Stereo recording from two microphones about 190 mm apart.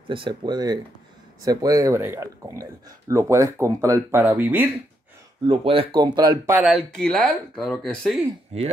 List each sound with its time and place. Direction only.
0.1 s speech: 25° right (ahead or behind); by 4.6 s 10° right (ahead or behind)
5.5 s speech: 30° right (ahead or behind)
6.6 s speech: centre (ahead or behind)